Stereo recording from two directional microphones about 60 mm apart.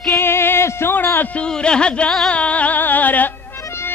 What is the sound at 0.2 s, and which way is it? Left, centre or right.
Music, left.